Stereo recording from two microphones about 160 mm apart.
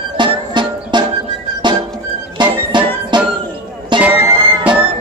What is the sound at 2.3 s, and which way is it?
Music, 30° right (ahead or behind).